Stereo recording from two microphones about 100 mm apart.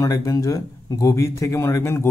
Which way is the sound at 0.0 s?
35° left (ahead or behind).